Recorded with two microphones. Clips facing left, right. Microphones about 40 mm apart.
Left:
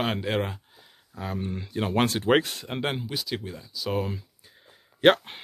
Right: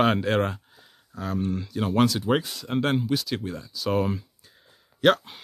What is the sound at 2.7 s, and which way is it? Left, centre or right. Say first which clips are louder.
Speech: right 7 dB; centre.